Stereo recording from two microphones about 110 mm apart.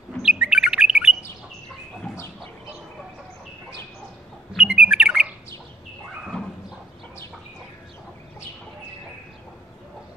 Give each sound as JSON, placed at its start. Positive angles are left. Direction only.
{"t": 0.2, "sound": "bird", "side_deg": -5}
{"t": 4.5, "sound": "squawk", "side_deg": -5}